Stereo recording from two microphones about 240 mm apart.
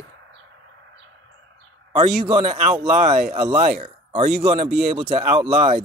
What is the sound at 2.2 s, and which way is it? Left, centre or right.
Speech, right.